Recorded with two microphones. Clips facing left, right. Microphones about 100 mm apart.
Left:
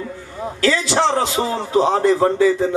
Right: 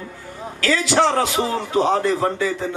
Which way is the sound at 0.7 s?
25° left (ahead or behind).